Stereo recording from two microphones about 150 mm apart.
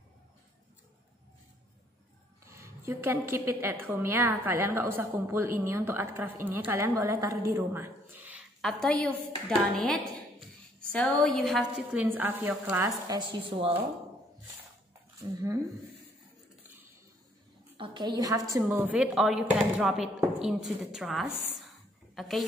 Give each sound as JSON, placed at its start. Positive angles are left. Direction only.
{"t": 2.4, "sound": "a woman's voice", "side_deg": -20}
{"t": 8.5, "sound": "a woman's voice", "side_deg": 5}
{"t": 12.8, "sound": "a woman's voice", "side_deg": -25}
{"t": 17.7, "sound": "a woman's voice", "side_deg": -35}
{"t": 18.9, "sound": "a woman's voice", "side_deg": -5}